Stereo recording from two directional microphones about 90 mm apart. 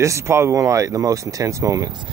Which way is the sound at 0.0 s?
30° right (ahead or behind).